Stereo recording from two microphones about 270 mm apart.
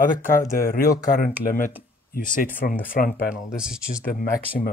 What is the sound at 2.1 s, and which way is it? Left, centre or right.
Speech, left.